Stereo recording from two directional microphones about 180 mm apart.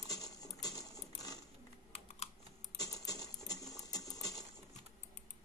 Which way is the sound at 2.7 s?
20° left (ahead or behind).